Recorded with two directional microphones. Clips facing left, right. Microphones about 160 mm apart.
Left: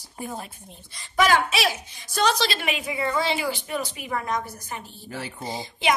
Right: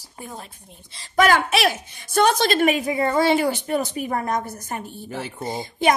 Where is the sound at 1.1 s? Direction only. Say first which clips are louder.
Right 3 dB; 55° right (ahead or behind).